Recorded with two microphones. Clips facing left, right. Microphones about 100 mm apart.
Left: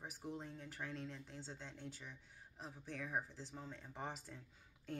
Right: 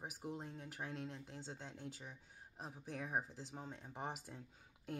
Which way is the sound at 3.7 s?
40° right (ahead or behind).